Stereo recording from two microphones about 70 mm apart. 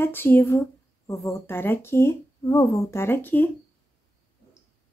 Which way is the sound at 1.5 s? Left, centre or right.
Left.